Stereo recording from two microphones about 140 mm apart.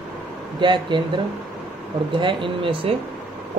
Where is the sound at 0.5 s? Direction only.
35° right (ahead or behind).